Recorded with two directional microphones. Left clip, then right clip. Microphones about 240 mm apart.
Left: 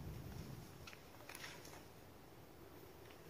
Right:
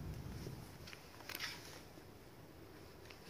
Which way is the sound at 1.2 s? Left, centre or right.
Right.